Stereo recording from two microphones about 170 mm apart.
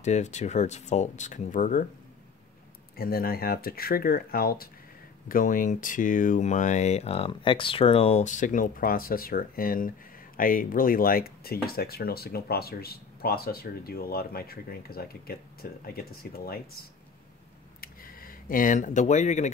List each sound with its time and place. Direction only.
0.0 s speech: 40° left (ahead or behind)
3.0 s speech: 60° left (ahead or behind)
17.7 s a sound: 55° left (ahead or behind)